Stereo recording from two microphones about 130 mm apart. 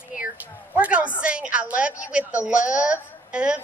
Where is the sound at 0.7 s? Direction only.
10° right (ahead or behind).